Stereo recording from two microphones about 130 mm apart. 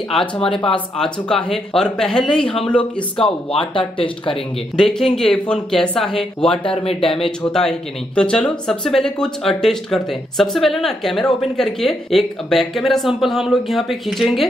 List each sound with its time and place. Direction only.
0.4 s speech: 45° left (ahead or behind)
0.9 s speech: 5° left (ahead or behind)
3.3 s speech: 40° left (ahead or behind)
4.7 s speech: 5° left (ahead or behind)
6.6 s speech: 45° left (ahead or behind)
7.1 s speech: 5° left (ahead or behind)